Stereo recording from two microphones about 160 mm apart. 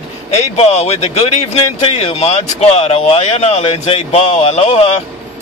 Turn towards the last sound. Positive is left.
turn(degrees=40)  # may be behind; listen again after turning